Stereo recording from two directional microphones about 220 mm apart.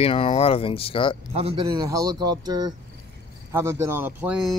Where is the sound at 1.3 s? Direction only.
25° right (ahead or behind).